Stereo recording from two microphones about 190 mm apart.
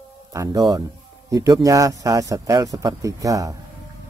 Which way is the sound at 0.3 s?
15° right (ahead or behind).